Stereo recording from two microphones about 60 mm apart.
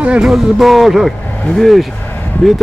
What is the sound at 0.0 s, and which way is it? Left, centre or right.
Speech, centre.